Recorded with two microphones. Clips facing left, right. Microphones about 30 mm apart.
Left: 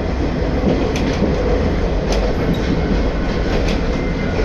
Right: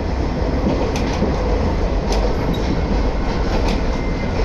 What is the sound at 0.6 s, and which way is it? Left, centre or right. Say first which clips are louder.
Train: left 3 dB; centre.